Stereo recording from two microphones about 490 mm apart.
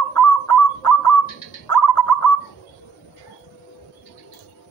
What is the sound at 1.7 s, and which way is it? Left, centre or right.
Bird, left.